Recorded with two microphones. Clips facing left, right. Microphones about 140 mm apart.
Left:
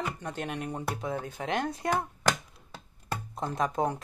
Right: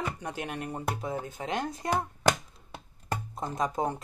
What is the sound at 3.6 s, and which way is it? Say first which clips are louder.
Speech: left 1 dB; centre (ahead or behind).